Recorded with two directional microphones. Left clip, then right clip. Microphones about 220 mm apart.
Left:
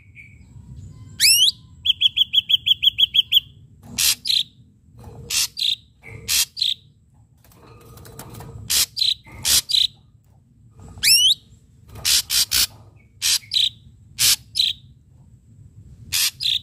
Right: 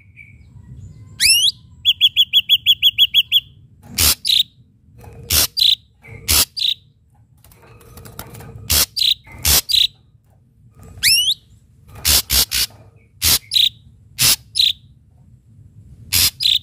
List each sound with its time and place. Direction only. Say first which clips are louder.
1.1 s bird: right 1 dB; 15° right (ahead or behind); by 6.8 s 30° right (ahead or behind)
8.6 s cricket: right 4 dB; 25° right (ahead or behind)
12.0 s a sound: right 3 dB; 20° right (ahead or behind)
12.4 s bird: even; 5° right (ahead or behind)
13.2 s bird: right 4 dB; 20° right (ahead or behind)
16.1 s bird: right 5 dB; 20° right (ahead or behind)